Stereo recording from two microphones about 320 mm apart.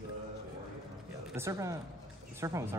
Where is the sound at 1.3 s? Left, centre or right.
Centre.